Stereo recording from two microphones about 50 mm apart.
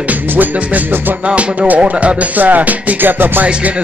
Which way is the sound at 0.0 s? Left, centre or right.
Right.